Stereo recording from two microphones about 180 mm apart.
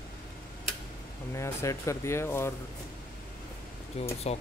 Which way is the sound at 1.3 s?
15° left (ahead or behind).